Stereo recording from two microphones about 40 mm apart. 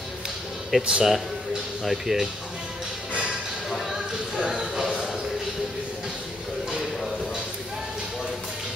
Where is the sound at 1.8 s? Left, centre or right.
Centre.